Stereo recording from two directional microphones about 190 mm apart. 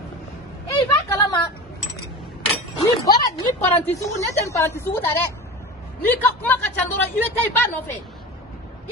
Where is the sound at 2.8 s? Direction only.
20° left (ahead or behind).